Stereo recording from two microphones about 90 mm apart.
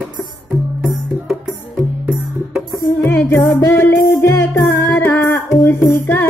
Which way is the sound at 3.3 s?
35° left (ahead or behind).